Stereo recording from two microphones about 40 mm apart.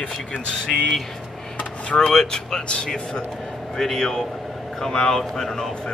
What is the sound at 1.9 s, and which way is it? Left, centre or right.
Speech, centre.